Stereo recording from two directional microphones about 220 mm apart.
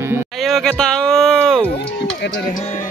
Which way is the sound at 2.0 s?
50° left (ahead or behind).